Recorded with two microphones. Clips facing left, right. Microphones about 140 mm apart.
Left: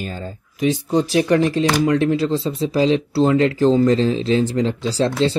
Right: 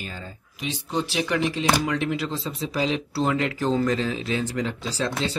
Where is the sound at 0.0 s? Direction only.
40° left (ahead or behind).